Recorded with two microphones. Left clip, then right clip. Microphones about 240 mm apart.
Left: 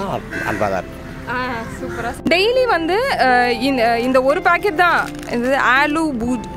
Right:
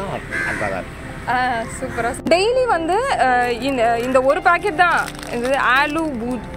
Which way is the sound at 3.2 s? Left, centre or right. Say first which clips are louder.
Left 3 dB; left.